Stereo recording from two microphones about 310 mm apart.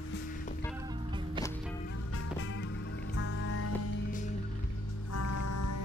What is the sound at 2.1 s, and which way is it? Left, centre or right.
Music, left.